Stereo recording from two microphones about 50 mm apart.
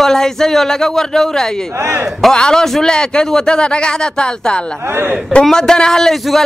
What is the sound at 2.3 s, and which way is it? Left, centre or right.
Speech, centre.